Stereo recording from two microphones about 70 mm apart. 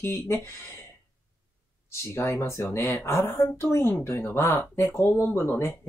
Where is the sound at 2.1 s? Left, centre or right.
Left.